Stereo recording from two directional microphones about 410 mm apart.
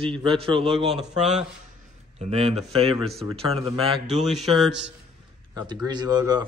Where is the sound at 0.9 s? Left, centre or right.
Centre.